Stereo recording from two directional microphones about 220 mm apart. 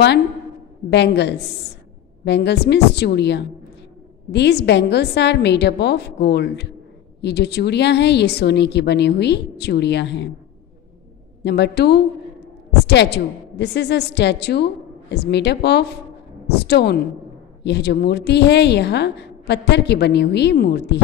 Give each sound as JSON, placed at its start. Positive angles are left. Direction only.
{"t": 0.8, "sound": "a woman's voice", "side_deg": 50}
{"t": 11.4, "sound": "a woman's voice", "side_deg": 50}